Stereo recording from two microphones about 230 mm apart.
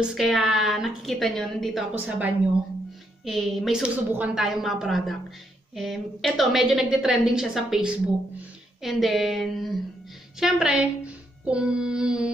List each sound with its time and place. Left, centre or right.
0.0 s a woman's voice: centre
10.4 s child singing: centre